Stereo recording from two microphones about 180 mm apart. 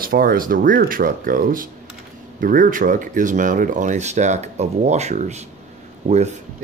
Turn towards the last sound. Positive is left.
turn(degrees=-40)  # may be behind; listen again after turning